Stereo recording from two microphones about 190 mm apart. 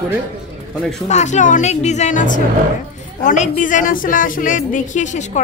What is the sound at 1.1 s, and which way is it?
A woman's voice, 40° left (ahead or behind).